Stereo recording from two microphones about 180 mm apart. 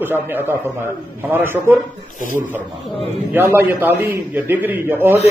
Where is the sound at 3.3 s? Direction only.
10° right (ahead or behind).